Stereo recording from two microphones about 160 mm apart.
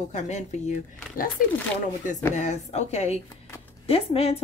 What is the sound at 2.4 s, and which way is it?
Speech, 45° left (ahead or behind).